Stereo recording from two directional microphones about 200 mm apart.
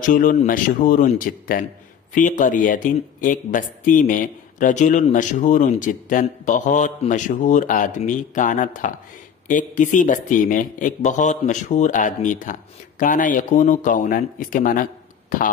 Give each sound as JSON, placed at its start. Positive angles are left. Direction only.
{"t": 0.0, "sound": "speech", "side_deg": 40}